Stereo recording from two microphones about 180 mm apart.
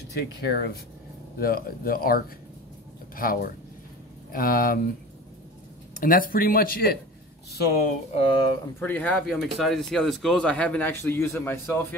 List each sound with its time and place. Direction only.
0.1 s speech: 65° left (ahead or behind)
1.4 s speech: 55° left (ahead or behind)
5.9 s speech: 50° left (ahead or behind)
8.1 s speech: 30° left (ahead or behind)
8.7 s speech: 10° left (ahead or behind)